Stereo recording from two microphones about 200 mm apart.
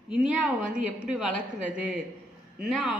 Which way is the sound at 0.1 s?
5° right (ahead or behind).